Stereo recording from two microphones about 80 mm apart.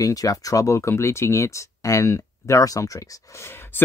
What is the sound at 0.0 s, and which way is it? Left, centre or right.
Speech, left.